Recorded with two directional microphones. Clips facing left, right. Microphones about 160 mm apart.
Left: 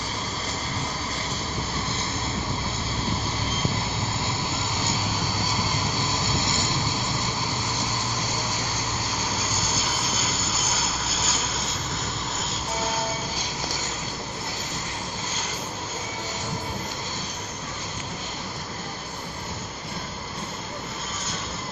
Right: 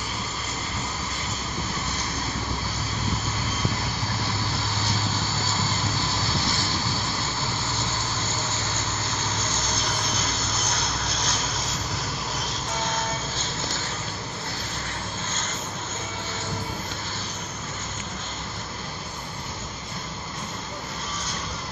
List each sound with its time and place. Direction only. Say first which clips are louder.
6.4 s vehicle: left 1 dB; 20° left (ahead or behind)
9.5 s vehicle: even; 10° left (ahead or behind)
13.4 s vehicle: even; 15° left (ahead or behind)